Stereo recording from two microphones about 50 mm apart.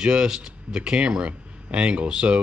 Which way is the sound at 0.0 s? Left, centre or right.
Centre.